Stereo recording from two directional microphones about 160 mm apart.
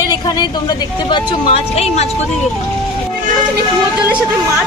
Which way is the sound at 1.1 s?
40° left (ahead or behind).